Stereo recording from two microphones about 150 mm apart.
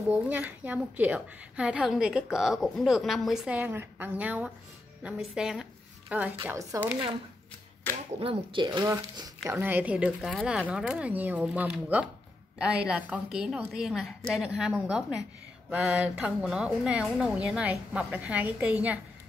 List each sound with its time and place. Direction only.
0.1 s a woman's voice: 10° right (ahead or behind)
6.4 s a woman's voice: 20° right (ahead or behind)
8.2 s a woman's voice: 35° right (ahead or behind); by 18.9 s 10° right (ahead or behind)